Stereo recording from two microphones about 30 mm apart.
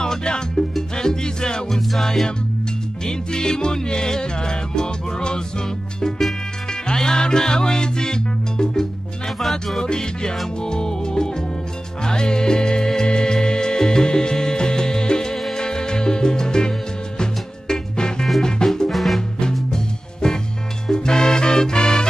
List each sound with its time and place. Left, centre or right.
0.0 s music: left
1.7 s music: centre
3.1 s music: left
6.7 s music: left
9.4 s music: centre
9.8 s music: left
18.9 s music: centre
19.7 s music: left